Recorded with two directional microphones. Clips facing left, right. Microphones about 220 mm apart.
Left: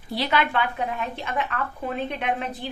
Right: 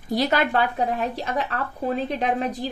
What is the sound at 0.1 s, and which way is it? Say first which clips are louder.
Speech: right 3 dB; 40° right (ahead or behind).